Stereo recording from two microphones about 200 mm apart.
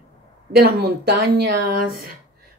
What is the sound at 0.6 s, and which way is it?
Speech, 50° right (ahead or behind).